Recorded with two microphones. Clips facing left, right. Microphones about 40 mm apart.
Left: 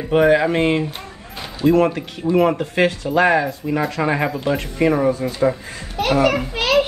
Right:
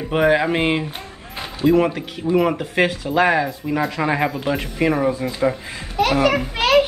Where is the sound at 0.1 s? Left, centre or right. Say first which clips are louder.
Left 2 dB; centre.